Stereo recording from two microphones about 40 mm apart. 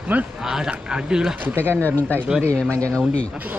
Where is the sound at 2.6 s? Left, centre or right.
Left.